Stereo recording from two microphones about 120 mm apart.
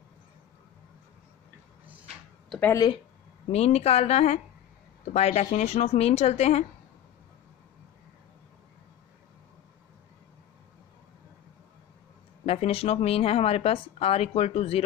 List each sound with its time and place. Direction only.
3.5 s speech: 60° left (ahead or behind)
12.4 s speech: 55° left (ahead or behind)